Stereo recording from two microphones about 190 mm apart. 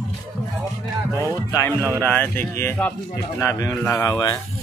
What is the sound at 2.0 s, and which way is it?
Speech, 10° left (ahead or behind).